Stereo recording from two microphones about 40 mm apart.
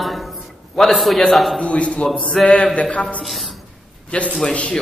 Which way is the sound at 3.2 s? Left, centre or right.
Centre.